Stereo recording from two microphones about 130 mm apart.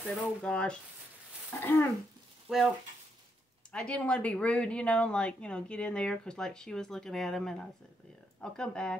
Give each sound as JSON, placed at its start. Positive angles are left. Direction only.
{"t": 0.0, "sound": "speech", "side_deg": 10}
{"t": 2.5, "sound": "speech", "side_deg": -5}
{"t": 3.7, "sound": "speech", "side_deg": 10}